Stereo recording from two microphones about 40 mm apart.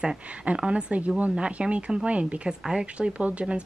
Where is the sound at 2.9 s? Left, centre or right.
Right.